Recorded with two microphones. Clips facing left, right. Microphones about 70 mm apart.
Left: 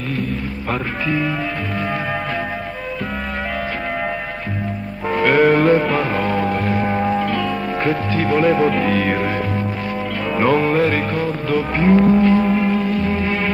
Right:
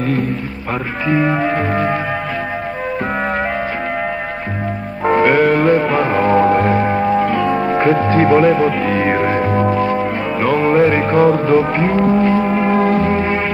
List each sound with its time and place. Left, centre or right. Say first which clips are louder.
1.0 s music: right 8 dB; right
5.2 s music: even; centre; by 8.4 s right
8.4 s speech: right 3 dB; centre
9.0 s music: right 5 dB; right
9.5 s music: right 8 dB; right
10.3 s music: left 1 dB; centre
10.6 s music: right 4 dB; right
11.1 s music: right 9 dB; right
11.7 s music: even; centre